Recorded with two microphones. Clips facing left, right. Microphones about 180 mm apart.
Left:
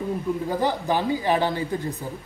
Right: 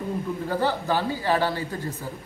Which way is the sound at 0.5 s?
15° left (ahead or behind).